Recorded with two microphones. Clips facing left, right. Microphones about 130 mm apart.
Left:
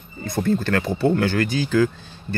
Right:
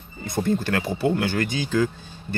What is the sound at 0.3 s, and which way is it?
Speech, 15° right (ahead or behind).